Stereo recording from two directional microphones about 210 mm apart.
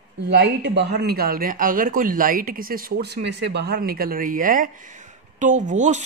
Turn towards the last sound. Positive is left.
turn(degrees=-35)  # may be behind; listen again after turning